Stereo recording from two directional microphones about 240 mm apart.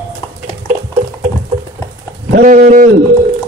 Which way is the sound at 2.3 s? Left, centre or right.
Right.